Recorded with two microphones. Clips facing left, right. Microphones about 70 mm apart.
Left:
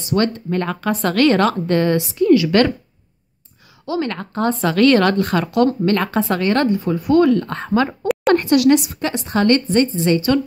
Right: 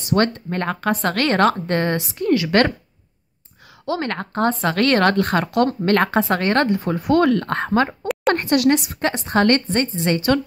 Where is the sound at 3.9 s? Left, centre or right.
Right.